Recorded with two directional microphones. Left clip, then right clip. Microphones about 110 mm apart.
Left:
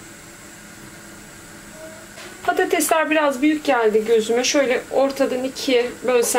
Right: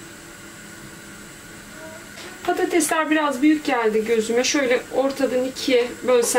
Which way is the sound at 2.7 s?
30° left (ahead or behind).